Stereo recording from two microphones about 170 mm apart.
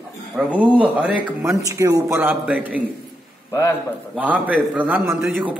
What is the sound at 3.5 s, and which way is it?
Speech, 20° left (ahead or behind).